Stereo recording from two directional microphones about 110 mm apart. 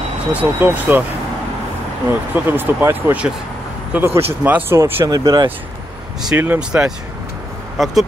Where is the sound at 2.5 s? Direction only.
20° right (ahead or behind).